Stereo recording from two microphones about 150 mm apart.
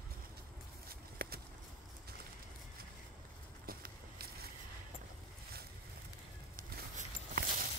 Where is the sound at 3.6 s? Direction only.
90° right.